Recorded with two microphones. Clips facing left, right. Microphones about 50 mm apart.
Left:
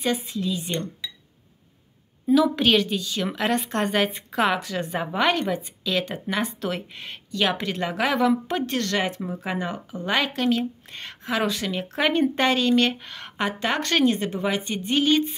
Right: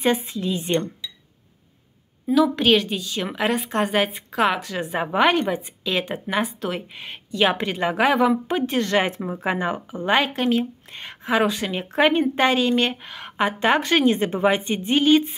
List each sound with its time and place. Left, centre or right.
0.0 s speech: right
2.2 s a woman's voice: centre; by 6.2 s right
6.2 s speech: centre
8.1 s speech: centre
11.7 s speech: right
13.6 s speech: right
15.0 s speech: centre